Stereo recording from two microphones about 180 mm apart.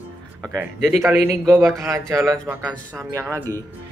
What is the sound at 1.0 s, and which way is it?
Speech, 15° right (ahead or behind).